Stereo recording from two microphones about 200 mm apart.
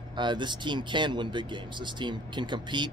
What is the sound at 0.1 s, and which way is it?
Speech, 25° right (ahead or behind).